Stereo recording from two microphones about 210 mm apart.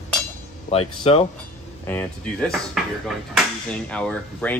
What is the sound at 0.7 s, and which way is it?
Speech, 30° left (ahead or behind).